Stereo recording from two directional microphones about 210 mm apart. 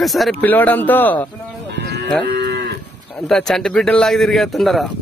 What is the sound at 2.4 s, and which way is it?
Moo, 55° right (ahead or behind).